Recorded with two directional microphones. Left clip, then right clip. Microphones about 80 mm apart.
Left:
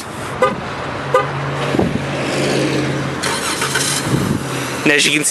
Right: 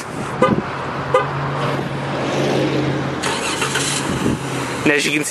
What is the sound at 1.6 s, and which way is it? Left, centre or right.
Vehicle, left.